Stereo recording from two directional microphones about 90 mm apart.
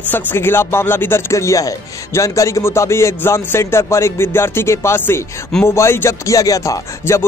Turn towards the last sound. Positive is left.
turn(degrees=35)  # may be behind; listen again after turning